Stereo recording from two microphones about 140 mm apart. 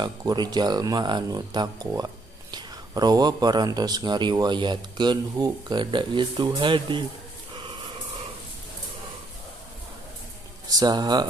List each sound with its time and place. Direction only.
0.0 s speech: 30° right (ahead or behind)
7.5 s a sound: 35° right (ahead or behind)
10.7 s speech: 30° right (ahead or behind)